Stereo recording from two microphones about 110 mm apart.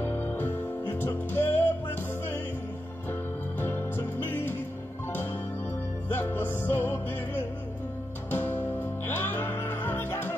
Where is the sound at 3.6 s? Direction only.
20° left (ahead or behind).